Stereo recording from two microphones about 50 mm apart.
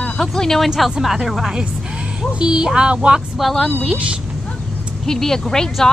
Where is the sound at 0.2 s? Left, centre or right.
Centre.